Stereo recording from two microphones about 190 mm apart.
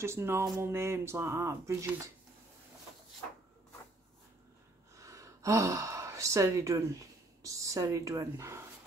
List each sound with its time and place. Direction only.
0.0 s speech: 15° right (ahead or behind)
4.9 s speech: 15° right (ahead or behind)